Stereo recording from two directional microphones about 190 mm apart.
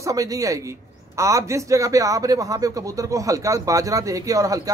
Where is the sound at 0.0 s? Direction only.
20° right (ahead or behind).